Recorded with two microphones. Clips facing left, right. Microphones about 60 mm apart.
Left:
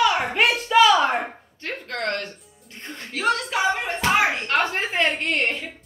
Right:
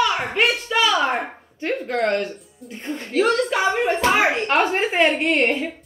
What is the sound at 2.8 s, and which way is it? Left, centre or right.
Speech, centre.